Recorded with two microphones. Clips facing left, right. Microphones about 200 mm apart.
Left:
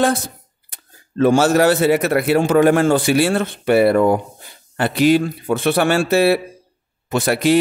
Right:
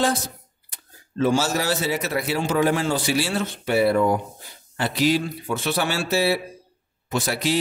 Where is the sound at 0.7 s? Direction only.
60° left (ahead or behind).